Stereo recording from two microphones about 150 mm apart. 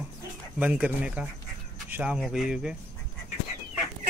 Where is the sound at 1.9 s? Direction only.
10° right (ahead or behind).